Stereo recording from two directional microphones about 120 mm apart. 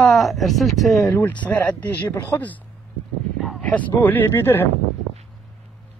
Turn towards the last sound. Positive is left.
turn(degrees=20)  # may be behind; listen again after turning